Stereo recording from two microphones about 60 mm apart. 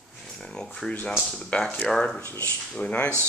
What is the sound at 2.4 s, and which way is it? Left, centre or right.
Speech, left.